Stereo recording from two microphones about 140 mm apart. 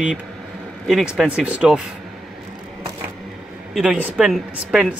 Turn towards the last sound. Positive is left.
turn(degrees=-5)  # may be behind; listen again after turning